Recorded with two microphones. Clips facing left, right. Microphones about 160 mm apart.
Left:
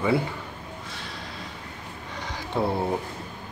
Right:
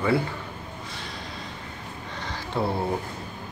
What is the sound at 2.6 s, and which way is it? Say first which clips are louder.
Speech: left 1 dB; 20° left (ahead or behind).